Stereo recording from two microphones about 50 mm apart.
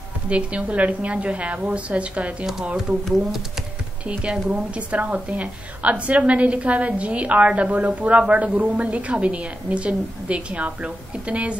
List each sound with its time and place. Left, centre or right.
0.3 s a woman's voice: right
4.1 s a woman's voice: right